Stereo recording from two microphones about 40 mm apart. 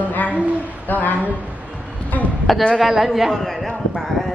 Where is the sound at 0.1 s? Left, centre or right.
Left.